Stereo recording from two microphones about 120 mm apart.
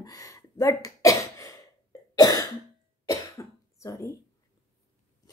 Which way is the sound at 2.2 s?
30° left (ahead or behind).